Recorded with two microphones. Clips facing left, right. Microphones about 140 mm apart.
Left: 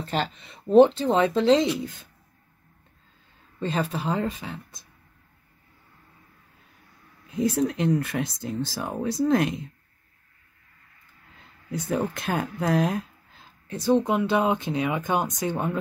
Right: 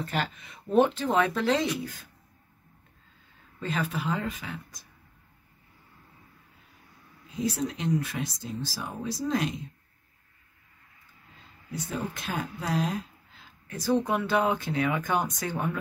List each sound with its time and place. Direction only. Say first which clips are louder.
0.0 s speech: left 3 dB; 30° left (ahead or behind)
3.5 s speech: left 4 dB; 30° left (ahead or behind)
7.3 s speech: left 6 dB; 55° left (ahead or behind)
11.7 s speech: left 7 dB; 55° left (ahead or behind)
13.7 s speech: left 4 dB; 20° left (ahead or behind)